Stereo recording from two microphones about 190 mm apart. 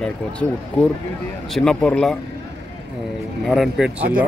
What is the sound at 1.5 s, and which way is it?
Speech, 5° left (ahead or behind).